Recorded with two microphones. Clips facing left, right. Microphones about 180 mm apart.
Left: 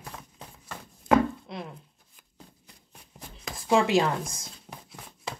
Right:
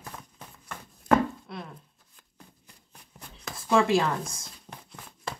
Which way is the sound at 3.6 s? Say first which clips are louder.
Even; 20° left (ahead or behind).